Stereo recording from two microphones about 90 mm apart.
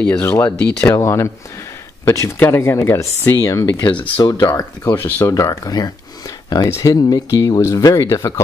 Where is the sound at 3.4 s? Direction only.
40° left (ahead or behind).